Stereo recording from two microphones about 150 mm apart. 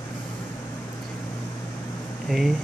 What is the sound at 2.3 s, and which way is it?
Speech, centre (ahead or behind).